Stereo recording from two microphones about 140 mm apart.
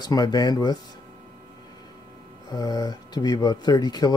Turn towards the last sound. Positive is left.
turn(degrees=30)  # may be behind; listen again after turning